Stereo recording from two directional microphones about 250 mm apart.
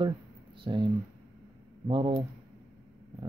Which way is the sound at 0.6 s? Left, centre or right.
Centre.